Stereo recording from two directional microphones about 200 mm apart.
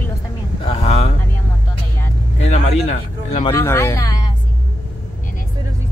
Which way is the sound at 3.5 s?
15° left (ahead or behind).